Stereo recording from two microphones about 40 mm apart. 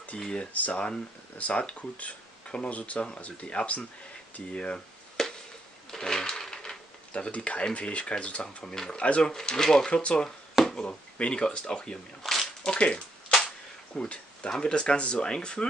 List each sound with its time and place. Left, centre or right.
0.2 s speech: left
0.5 s speech: left
2.4 s a sound: left
2.7 s speech: left
4.7 s chop: centre
5.9 s sewing machine: centre
6.4 s typewriter: centre
7.1 s speech: left
8.6 s speech: centre
8.9 s speech: left
9.3 s speech: centre
9.8 s speech: left
12.2 s a sound: centre
12.6 s speech: left